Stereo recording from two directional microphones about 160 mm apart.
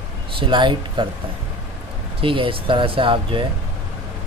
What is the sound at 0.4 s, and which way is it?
Speech, 30° right (ahead or behind).